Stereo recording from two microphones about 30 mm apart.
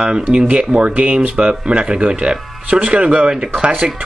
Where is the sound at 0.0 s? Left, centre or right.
Right.